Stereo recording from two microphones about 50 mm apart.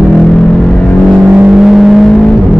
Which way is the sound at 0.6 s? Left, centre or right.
Centre.